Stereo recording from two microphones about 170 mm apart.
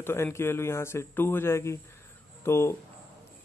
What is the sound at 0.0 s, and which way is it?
Speech, 15° left (ahead or behind).